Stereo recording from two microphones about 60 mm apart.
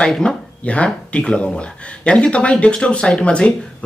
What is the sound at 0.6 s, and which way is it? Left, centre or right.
Speech, left.